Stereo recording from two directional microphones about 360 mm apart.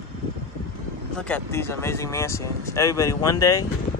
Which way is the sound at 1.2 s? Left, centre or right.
Centre.